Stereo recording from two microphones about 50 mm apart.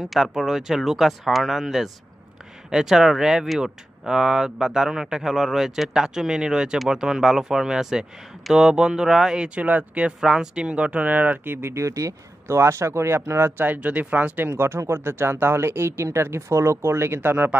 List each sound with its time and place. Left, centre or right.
0.0 s speech: centre
9.6 s speech: right
11.4 s speech: right
11.7 s speech: right
13.7 s speech: right
14.5 s speech: right